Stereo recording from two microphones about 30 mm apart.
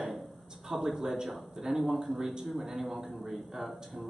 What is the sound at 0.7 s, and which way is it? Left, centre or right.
A man's voice, centre.